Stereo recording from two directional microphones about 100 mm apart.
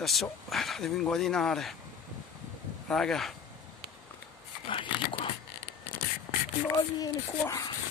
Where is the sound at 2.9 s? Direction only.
5° left (ahead or behind).